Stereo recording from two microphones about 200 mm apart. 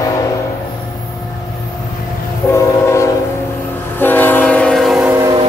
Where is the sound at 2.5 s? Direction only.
15° left (ahead or behind).